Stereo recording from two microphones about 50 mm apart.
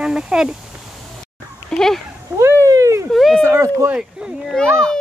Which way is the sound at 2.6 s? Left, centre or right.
Right.